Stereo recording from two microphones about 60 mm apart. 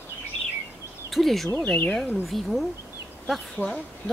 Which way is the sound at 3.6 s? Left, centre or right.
Left.